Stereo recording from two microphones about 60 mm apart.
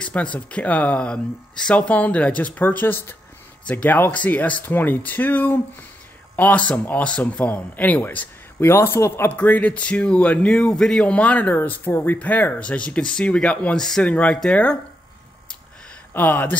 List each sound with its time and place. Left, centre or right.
0.0 s speech: left
8.6 s speech: left
9.3 s speech: left
13.7 s a man's voice: centre
14.0 s speech: centre
16.1 s speech: left